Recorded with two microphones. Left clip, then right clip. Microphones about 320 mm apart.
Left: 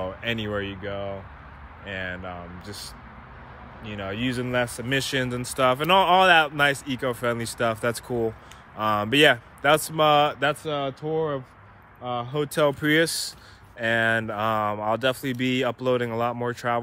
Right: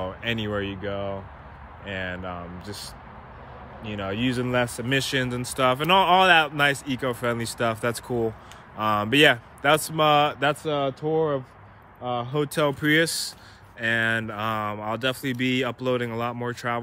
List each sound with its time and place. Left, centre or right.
0.0 s speech: centre